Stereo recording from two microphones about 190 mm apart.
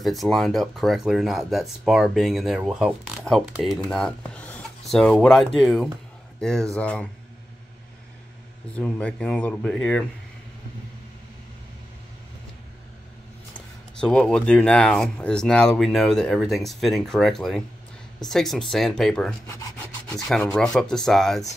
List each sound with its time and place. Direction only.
0.0 s speech: centre (ahead or behind)
8.7 s speech: 5° left (ahead or behind)
13.5 s speech: 5° left (ahead or behind)
20.5 s speech: 5° left (ahead or behind)